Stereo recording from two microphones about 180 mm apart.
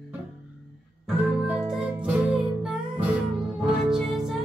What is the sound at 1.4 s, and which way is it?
Music, centre (ahead or behind).